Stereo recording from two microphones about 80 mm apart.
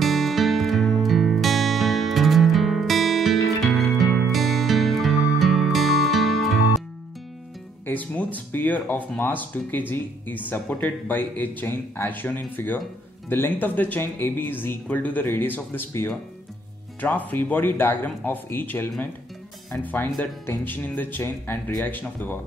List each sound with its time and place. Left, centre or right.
0.0 s music: centre
7.8 s speech: left